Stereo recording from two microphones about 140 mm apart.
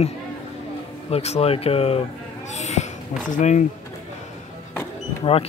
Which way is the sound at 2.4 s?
55° left (ahead or behind).